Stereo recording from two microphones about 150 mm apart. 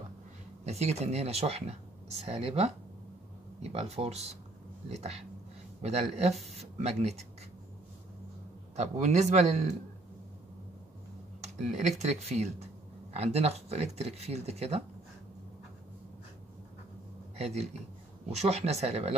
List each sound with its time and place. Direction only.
0.7 s speech: 45° right (ahead or behind)
3.7 s speech: 45° right (ahead or behind)
8.7 s speech: 50° right (ahead or behind)
11.4 s speech: 50° right (ahead or behind)
17.4 s speech: 45° right (ahead or behind)